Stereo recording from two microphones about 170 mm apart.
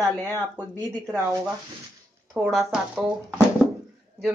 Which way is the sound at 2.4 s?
Centre (ahead or behind).